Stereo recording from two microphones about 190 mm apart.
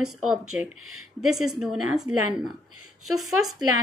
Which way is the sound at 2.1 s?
35° left (ahead or behind).